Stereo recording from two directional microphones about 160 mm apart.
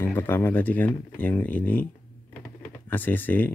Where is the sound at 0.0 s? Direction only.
15° left (ahead or behind).